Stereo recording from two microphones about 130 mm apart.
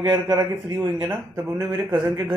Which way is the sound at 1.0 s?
25° right (ahead or behind).